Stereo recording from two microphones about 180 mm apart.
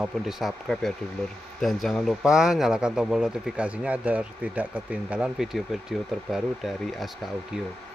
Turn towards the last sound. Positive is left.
turn(degrees=0)  # may be behind; listen again after turning